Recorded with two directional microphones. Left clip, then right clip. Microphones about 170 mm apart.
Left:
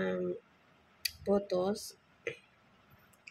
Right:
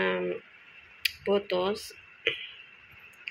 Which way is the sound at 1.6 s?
20° right (ahead or behind).